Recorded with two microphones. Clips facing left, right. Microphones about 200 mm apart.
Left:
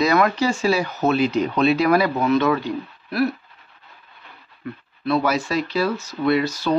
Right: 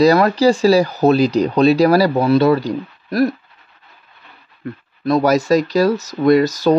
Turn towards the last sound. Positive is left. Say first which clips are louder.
# right 7 dB
turn(degrees=-40)  # may be behind; listen again after turning